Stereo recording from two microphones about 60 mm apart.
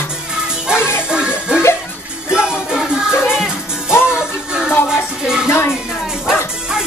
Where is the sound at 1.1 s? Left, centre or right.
Centre.